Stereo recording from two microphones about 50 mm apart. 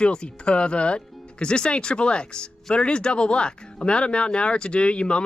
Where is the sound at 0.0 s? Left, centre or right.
Centre.